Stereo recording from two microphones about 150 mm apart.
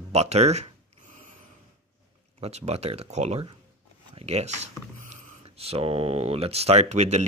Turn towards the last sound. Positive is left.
turn(degrees=-50)  # may be behind; listen again after turning